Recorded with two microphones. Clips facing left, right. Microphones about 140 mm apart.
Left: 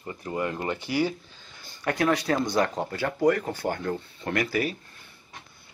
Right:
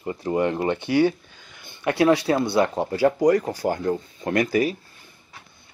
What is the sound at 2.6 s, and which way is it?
Speech, 10° right (ahead or behind).